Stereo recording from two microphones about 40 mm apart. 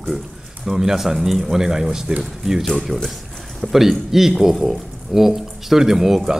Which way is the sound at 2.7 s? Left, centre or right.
Centre.